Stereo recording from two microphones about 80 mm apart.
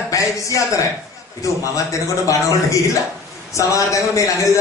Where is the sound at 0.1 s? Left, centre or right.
Left.